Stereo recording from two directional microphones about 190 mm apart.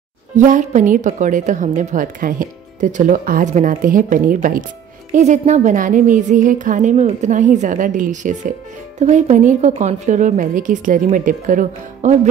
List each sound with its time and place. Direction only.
0.4 s a woman's voice: 40° right (ahead or behind)